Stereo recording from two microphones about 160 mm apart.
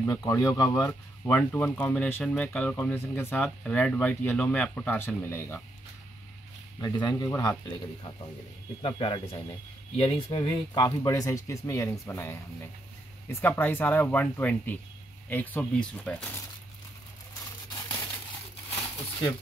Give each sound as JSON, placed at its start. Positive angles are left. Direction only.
{"t": 0.0, "sound": "speech", "side_deg": 20}
{"t": 6.8, "sound": "speech", "side_deg": 25}
{"t": 8.8, "sound": "speech", "side_deg": 30}
{"t": 17.6, "sound": "crumpling", "side_deg": 25}